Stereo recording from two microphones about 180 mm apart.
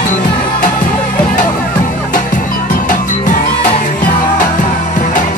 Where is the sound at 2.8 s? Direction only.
45° left (ahead or behind).